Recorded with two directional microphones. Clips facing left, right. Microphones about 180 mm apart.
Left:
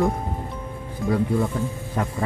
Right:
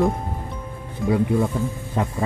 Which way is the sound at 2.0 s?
25° right (ahead or behind).